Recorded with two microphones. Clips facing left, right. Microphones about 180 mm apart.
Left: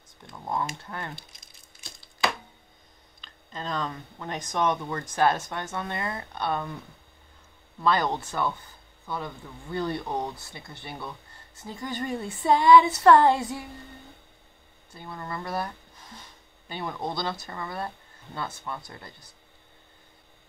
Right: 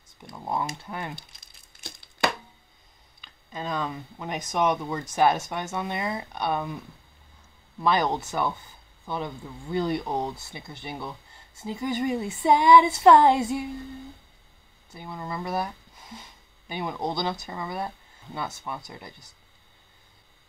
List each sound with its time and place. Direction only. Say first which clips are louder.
0.2 s a woman's voice: right 1 dB; 10° right (ahead or behind)
1.4 s a sound: right 4 dB; 60° right (ahead or behind)
3.2 s a woman's voice: right 2 dB; 10° right (ahead or behind)
7.8 s a woman's voice: right 1 dB; 15° right (ahead or behind)
14.9 s a woman's voice: right 2 dB; 15° right (ahead or behind)